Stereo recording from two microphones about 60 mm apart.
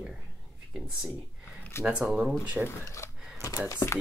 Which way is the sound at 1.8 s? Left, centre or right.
Centre.